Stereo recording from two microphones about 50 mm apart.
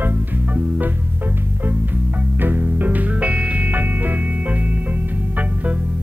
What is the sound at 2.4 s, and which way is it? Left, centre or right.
Music, right.